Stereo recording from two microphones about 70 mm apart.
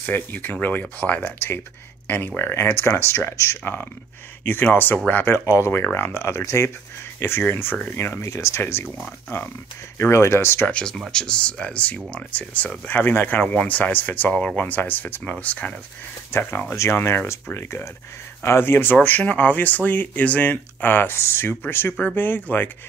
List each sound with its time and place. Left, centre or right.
0.0 s speech: left
5.6 s speech: left
8.2 s speech: left
8.8 s speech: centre
9.9 s speech: left
10.7 s speech: centre
16.3 s speech: left
16.7 s speech: left